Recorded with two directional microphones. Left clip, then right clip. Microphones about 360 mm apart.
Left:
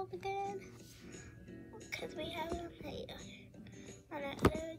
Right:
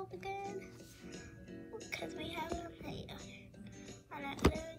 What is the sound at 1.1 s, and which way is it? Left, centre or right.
Music, centre.